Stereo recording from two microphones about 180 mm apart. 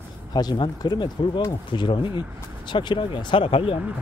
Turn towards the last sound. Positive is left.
turn(degrees=30)  # may be behind; listen again after turning